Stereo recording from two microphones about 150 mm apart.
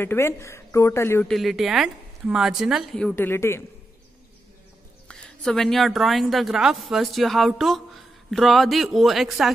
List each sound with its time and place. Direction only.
0.0 s speech: 15° left (ahead or behind)
1.2 s a woman's voice: centre (ahead or behind)
3.2 s speech: 15° left (ahead or behind)
5.0 s a woman's voice: 5° left (ahead or behind)